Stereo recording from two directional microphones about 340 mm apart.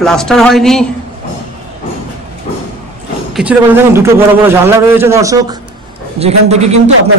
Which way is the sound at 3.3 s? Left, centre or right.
Centre.